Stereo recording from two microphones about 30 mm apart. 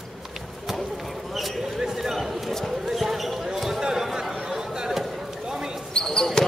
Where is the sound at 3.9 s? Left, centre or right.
Centre.